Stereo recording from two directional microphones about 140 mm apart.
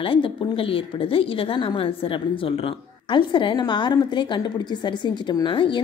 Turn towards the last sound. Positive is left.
turn(degrees=35)  # may be behind; listen again after turning